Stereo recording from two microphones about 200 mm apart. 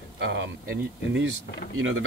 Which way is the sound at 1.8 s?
75° right (ahead or behind).